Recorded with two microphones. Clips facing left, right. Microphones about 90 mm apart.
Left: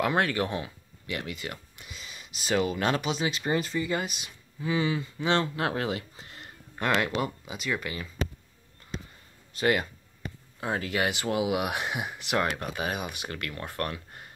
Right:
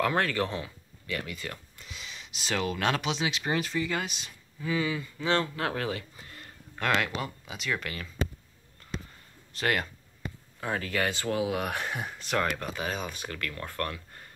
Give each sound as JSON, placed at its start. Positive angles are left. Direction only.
{"t": 0.0, "sound": "speech", "side_deg": 15}
{"t": 1.9, "sound": "speech", "side_deg": 5}
{"t": 4.6, "sound": "speech", "side_deg": 25}
{"t": 6.7, "sound": "speech", "side_deg": 5}
{"t": 9.5, "sound": "speech", "side_deg": 5}
{"t": 10.9, "sound": "speech", "side_deg": 15}